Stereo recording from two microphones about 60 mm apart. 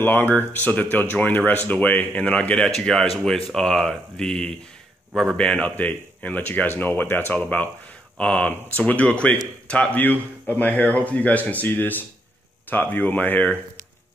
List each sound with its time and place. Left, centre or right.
0.0 s speech: left
2.6 s speech: centre
5.8 s speech: left
9.9 s speech: left